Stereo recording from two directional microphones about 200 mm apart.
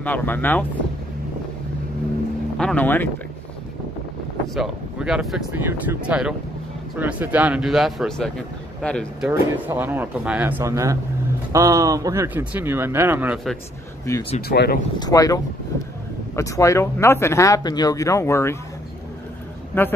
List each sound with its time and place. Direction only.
0.0 s speech: 10° left (ahead or behind)
2.5 s speech: 5° left (ahead or behind)
4.6 s speech: 5° right (ahead or behind)
9.3 s speech: 10° right (ahead or behind)
14.1 s speech: 15° left (ahead or behind)
14.5 s speech: 55° left (ahead or behind)
15.0 s speech: 20° left (ahead or behind)
19.7 s speech: 10° left (ahead or behind)